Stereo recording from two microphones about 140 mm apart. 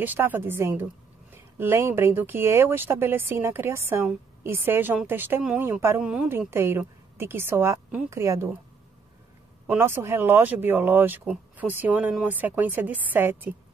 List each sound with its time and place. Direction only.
0.0 s a woman's voice: 15° right (ahead or behind)
9.7 s speech: 15° right (ahead or behind)